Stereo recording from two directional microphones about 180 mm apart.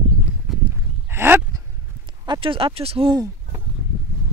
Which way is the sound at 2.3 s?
30° right (ahead or behind).